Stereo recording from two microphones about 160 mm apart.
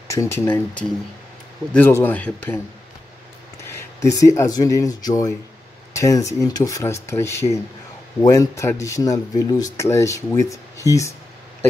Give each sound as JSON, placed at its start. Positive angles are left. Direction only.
{"t": 0.1, "sound": "speech", "side_deg": 15}
{"t": 3.6, "sound": "speech", "side_deg": 20}